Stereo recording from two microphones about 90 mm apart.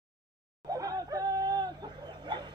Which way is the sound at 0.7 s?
40° right (ahead or behind).